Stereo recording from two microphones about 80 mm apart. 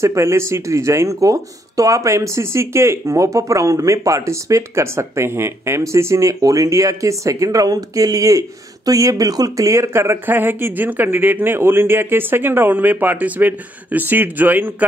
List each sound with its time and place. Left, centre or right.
0.0 s speech: right